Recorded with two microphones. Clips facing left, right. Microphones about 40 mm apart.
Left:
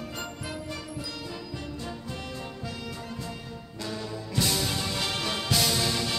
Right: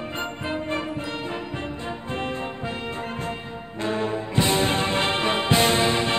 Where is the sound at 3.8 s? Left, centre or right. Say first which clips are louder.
Right 10 dB; right.